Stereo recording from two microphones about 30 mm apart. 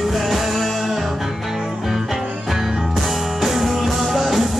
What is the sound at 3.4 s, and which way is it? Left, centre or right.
Music, centre.